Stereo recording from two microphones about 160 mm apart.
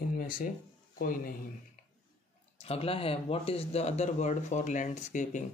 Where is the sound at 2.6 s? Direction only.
40° left (ahead or behind).